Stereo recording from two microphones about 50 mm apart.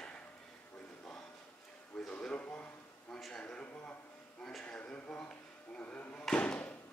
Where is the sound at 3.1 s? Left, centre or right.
Centre.